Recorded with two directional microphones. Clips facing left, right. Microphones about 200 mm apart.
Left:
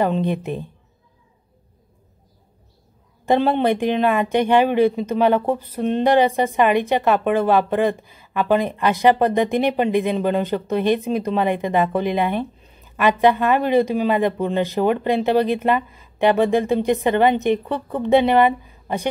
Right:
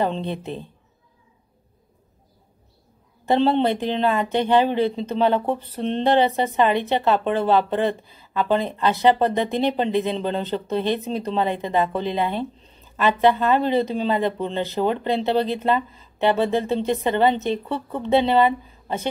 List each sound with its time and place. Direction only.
0.0 s speech: 15° left (ahead or behind)
3.3 s speech: 10° left (ahead or behind)
12.6 s a sound: 15° left (ahead or behind)
13.7 s speech: 15° left (ahead or behind)